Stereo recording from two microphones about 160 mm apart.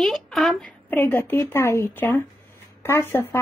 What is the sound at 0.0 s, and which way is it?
A woman's voice, centre (ahead or behind).